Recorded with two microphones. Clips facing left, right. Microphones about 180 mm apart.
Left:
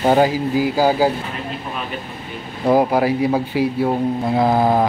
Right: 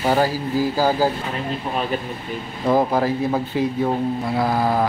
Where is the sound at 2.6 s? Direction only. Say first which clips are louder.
Left 3 dB; 10° left (ahead or behind).